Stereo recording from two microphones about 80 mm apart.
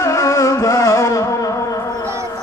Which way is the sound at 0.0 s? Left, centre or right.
Left.